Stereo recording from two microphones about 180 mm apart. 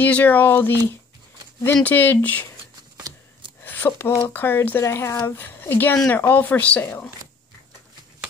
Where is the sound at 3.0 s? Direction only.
25° right (ahead or behind).